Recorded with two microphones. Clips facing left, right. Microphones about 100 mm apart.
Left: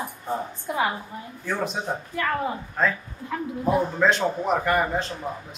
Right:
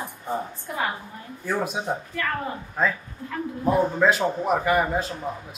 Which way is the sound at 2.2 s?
15° left (ahead or behind).